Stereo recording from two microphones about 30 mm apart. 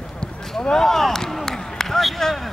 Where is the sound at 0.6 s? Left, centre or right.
Left.